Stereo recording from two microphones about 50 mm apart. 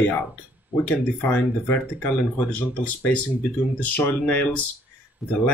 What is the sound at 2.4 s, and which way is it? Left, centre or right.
Speech, left.